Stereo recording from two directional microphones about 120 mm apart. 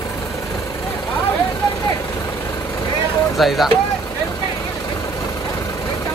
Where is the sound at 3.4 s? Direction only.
Centre (ahead or behind).